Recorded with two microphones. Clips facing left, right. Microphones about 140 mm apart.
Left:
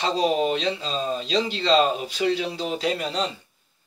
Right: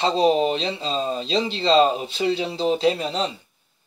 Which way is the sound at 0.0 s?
25° right (ahead or behind).